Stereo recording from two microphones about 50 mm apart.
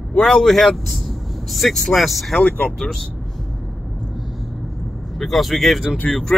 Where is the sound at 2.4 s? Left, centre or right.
Left.